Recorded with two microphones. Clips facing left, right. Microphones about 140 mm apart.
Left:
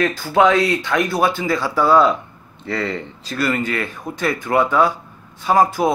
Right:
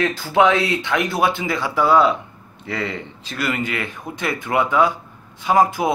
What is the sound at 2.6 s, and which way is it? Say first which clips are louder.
A man's voice: left 3 dB; 35° left (ahead or behind).